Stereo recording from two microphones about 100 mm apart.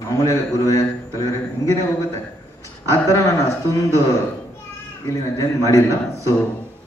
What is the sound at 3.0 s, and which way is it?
A man's voice, 30° left (ahead or behind).